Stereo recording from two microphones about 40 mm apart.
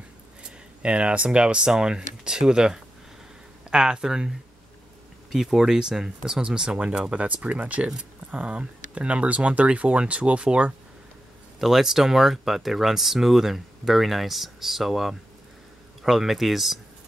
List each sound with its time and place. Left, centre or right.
0.4 s speech: right
7.4 s speech: right
11.6 s speech: centre